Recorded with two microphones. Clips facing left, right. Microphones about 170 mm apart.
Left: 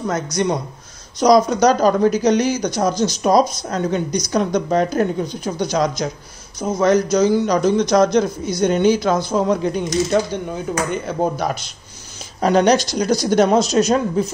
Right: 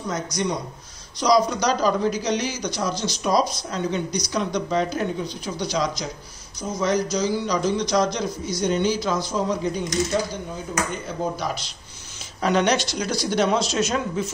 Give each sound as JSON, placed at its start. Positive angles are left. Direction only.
{"t": 0.0, "sound": "speech", "side_deg": 55}
{"t": 12.4, "sound": "speech", "side_deg": 40}